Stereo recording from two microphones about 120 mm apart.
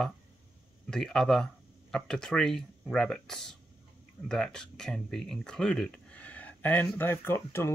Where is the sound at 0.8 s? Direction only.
5° left (ahead or behind).